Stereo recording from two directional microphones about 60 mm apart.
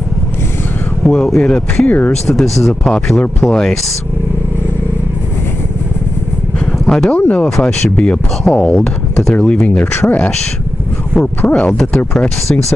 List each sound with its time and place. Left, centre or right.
1.0 s speech: centre
1.9 s speech: left
2.2 s speech: centre
6.6 s vehicle: centre
7.1 s speech: left
7.4 s speech: centre
11.7 s speech: centre
12.0 s speech: left